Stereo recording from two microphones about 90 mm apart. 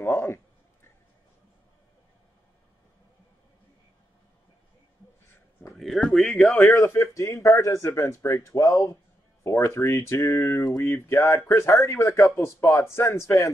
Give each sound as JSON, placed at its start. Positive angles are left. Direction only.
{"t": 0.0, "sound": "speech", "side_deg": 30}
{"t": 5.8, "sound": "speech", "side_deg": 5}
{"t": 6.8, "sound": "speech", "side_deg": 35}
{"t": 10.9, "sound": "speech", "side_deg": 30}